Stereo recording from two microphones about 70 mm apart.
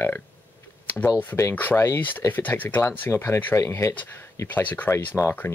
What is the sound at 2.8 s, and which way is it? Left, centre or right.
Speech, left.